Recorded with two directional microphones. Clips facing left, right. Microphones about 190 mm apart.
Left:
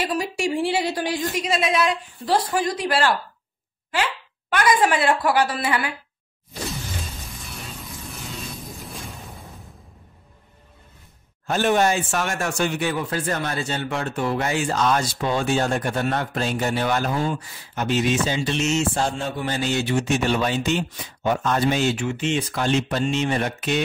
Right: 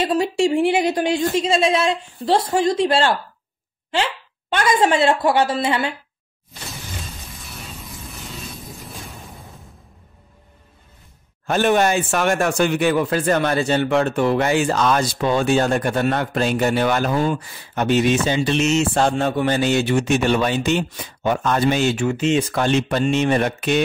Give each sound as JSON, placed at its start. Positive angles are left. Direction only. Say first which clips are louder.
{"t": 0.0, "sound": "a woman's voice", "louder": "right 6 dB", "side_deg": -25}
{"t": 7.4, "sound": "music", "louder": "right 1 dB", "side_deg": 0}
{"t": 11.4, "sound": "speech", "louder": "right 3 dB", "side_deg": -65}